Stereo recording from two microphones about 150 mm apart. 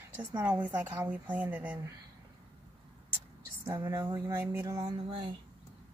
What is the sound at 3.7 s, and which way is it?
Speech, 15° right (ahead or behind).